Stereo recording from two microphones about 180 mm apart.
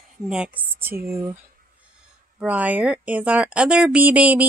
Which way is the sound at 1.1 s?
15° right (ahead or behind).